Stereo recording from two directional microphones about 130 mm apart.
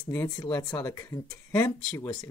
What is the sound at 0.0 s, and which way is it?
Speech, 25° left (ahead or behind).